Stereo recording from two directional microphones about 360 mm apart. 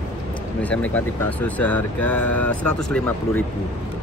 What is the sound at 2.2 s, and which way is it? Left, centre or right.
Speech, left.